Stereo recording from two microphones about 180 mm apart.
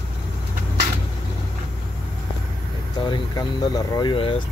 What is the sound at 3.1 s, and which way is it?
Speech, 20° left (ahead or behind).